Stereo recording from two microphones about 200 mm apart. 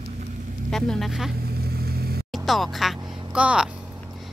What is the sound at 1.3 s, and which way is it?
Vehicle, 50° right (ahead or behind).